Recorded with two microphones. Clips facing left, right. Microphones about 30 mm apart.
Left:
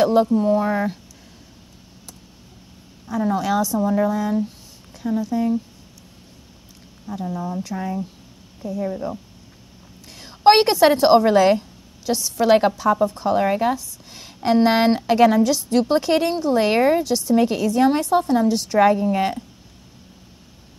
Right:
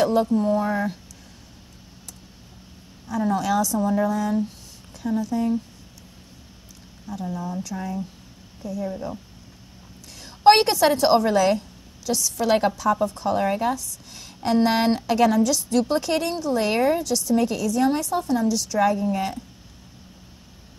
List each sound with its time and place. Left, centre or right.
0.0 s a woman's voice: centre
3.1 s a woman's voice: centre
7.2 s a woman's voice: centre
7.6 s a woman's voice: left